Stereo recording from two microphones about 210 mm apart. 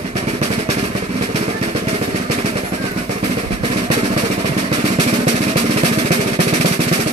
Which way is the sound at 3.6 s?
30° right (ahead or behind).